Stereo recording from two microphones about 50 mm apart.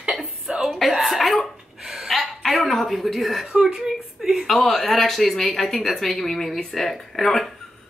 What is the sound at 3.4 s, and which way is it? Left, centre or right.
Speech, centre.